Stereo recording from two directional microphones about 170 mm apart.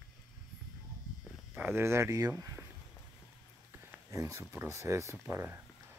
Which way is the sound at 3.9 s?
15° right (ahead or behind).